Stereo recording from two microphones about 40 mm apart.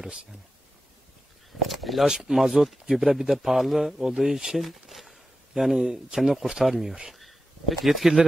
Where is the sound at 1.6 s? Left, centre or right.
Centre.